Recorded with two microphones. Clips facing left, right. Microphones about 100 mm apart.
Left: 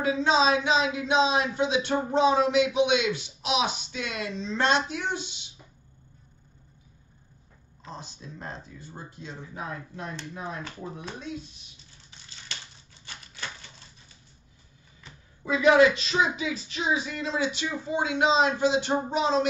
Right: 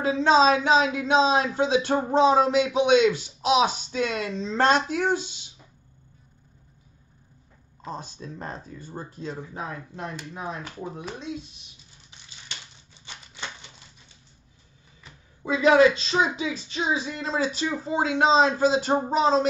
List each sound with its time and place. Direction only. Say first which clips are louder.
0.0 s speech: right 4 dB; 40° right (ahead or behind)
7.8 s speech: right 6 dB; 45° right (ahead or behind)
9.8 s speech: right 2 dB; 20° right (ahead or behind)
13.0 s typewriter: right 1 dB; 20° right (ahead or behind)
15.0 s a sound: even; centre (ahead or behind)
15.4 s speech: right 1 dB; 30° right (ahead or behind)